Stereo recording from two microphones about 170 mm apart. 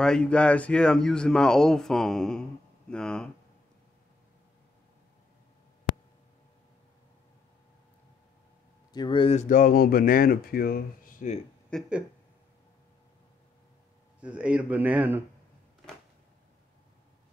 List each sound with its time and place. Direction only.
0.0 s speech: 5° left (ahead or behind)
8.9 s speech: 30° left (ahead or behind); by 11.2 s 60° left (ahead or behind)
11.7 s speech: 5° left (ahead or behind)
14.2 s a man's voice: 5° right (ahead or behind)